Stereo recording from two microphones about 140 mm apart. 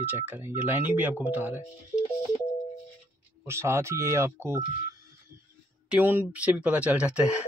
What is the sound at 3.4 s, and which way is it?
Speech, 20° right (ahead or behind).